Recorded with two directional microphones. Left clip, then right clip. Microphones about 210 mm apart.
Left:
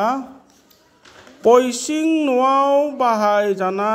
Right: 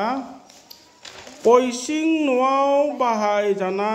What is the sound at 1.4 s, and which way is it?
Mantra, 25° left (ahead or behind).